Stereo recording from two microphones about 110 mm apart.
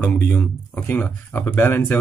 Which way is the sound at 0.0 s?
15° left (ahead or behind).